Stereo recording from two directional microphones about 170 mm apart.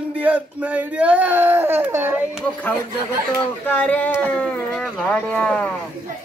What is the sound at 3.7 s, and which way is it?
Speech, 10° left (ahead or behind).